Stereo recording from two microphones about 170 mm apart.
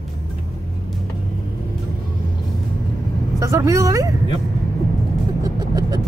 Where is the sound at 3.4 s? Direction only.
20° right (ahead or behind).